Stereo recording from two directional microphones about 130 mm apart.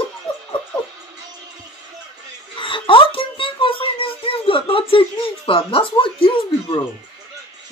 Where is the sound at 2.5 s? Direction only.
40° left (ahead or behind).